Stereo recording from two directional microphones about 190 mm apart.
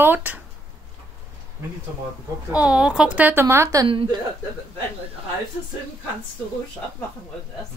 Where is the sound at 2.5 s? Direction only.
5° right (ahead or behind); by 4.2 s 25° right (ahead or behind).